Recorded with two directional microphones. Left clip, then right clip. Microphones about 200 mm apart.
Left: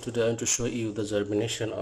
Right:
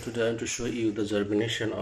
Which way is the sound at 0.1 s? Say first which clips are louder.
Left 2 dB; 10° left (ahead or behind).